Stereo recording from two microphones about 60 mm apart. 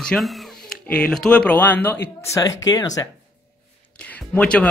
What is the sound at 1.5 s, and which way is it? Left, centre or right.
Speech, left.